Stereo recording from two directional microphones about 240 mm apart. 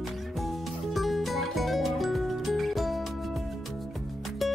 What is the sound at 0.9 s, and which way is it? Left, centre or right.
Music, centre.